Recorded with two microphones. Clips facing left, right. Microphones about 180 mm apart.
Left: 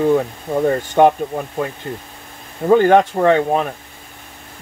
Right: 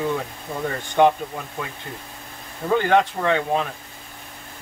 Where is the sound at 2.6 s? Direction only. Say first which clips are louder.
Left 7 dB; 45° left (ahead or behind).